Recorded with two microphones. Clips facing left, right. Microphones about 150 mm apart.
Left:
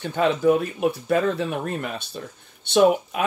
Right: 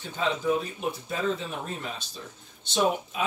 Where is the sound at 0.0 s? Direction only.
65° left (ahead or behind).